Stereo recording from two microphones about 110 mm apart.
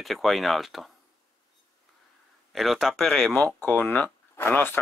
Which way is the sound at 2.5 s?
Centre (ahead or behind).